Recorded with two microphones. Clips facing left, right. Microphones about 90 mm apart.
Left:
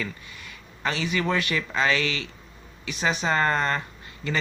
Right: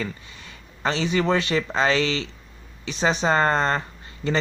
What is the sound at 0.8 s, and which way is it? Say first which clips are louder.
Speech: right 4 dB; 30° right (ahead or behind).